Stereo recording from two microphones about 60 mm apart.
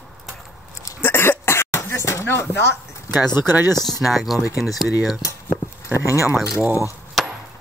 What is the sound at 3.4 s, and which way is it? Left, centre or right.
Speech, right.